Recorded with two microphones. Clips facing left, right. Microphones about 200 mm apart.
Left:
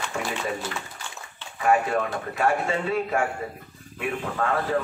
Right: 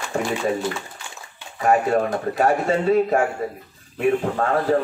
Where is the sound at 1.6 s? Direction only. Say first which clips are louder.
Right 4 dB; 40° right (ahead or behind).